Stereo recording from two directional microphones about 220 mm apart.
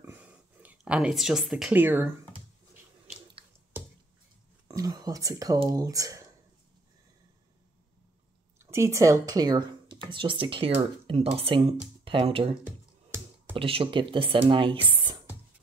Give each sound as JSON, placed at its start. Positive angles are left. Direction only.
{"t": 0.0, "sound": "a sound", "side_deg": -10}
{"t": 4.6, "sound": "speech", "side_deg": -15}
{"t": 8.5, "sound": "speech", "side_deg": -10}